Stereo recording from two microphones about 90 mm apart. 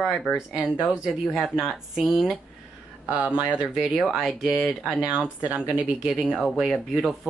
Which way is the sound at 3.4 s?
10° right (ahead or behind).